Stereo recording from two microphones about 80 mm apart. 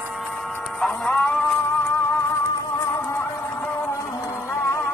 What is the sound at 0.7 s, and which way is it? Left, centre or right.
Music, centre.